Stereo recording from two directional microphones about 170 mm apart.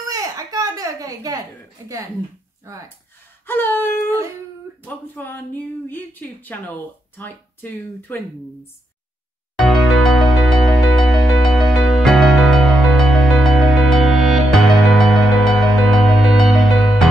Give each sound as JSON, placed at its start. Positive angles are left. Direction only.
{"t": 0.1, "sound": "a sound", "side_deg": -20}
{"t": 3.4, "sound": "speech", "side_deg": 10}
{"t": 9.7, "sound": "music", "side_deg": 0}